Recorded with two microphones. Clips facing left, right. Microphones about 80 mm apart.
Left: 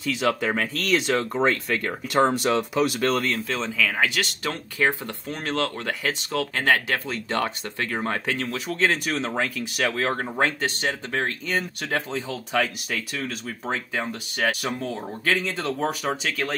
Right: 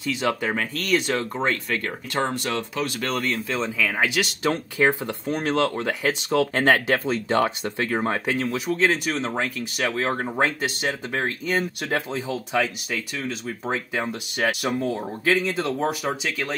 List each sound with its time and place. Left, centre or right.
0.0 s speech: centre
3.1 s speech: centre
3.7 s speech: centre
8.7 s speech: centre
13.9 s speech: centre